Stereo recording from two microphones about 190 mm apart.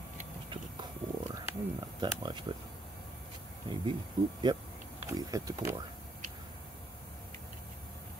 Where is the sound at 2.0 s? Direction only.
25° right (ahead or behind).